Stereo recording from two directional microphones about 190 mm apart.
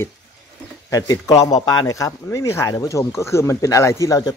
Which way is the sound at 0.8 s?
15° left (ahead or behind).